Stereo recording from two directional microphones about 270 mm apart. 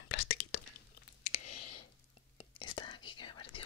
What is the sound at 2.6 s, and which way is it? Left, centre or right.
Whispering, centre.